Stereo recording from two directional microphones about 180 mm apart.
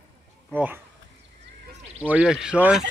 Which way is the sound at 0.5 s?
10° right (ahead or behind).